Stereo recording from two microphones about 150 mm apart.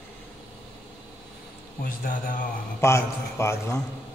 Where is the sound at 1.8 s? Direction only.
75° left (ahead or behind).